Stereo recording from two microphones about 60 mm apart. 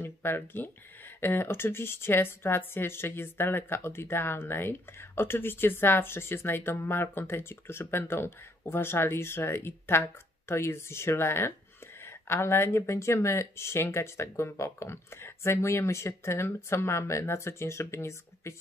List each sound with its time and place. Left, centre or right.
0.0 s speech: left